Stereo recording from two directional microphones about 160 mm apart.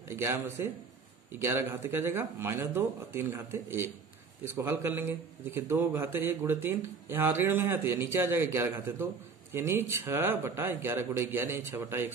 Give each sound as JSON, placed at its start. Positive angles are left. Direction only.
{"t": 0.1, "sound": "a man's voice", "side_deg": -15}